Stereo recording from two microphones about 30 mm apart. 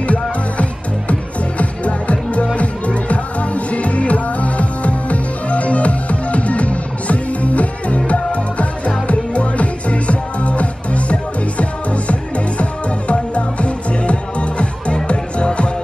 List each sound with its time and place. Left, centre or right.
0.0 s music: left